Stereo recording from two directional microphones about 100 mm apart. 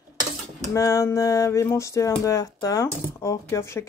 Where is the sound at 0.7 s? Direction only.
30° left (ahead or behind).